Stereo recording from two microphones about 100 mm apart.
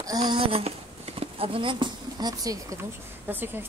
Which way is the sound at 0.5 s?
75° right (ahead or behind).